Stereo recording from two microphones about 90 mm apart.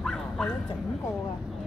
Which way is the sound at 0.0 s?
5° left (ahead or behind).